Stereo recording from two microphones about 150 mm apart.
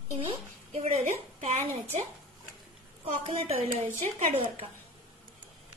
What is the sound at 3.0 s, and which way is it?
A woman's voice, 40° right (ahead or behind).